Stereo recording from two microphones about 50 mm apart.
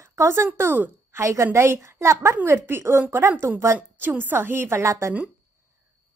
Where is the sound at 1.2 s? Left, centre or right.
Right.